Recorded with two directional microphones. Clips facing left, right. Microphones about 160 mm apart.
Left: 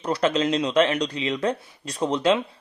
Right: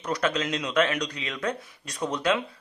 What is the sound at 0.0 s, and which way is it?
Speech, 30° left (ahead or behind).